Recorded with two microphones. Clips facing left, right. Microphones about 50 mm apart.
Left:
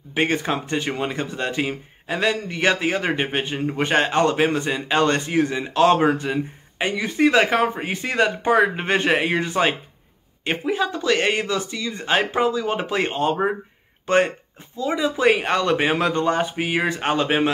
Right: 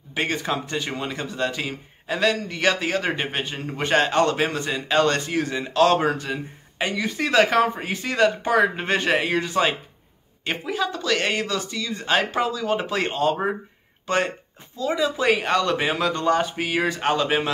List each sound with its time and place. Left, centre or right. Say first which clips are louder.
0.1 s speech: left 3 dB; left
14.1 s speech: left 5 dB; left
14.8 s speech: left 2 dB; left